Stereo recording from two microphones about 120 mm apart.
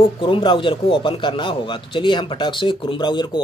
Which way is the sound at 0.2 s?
45° left (ahead or behind).